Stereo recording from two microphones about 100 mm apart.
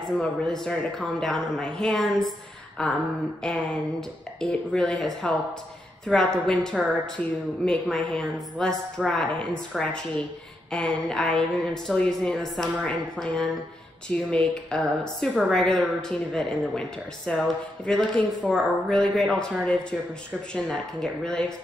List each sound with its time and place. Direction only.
0.2 s a woman's voice: 5° left (ahead or behind)
18.4 s speech: 15° right (ahead or behind)
19.1 s a woman's voice: 10° left (ahead or behind)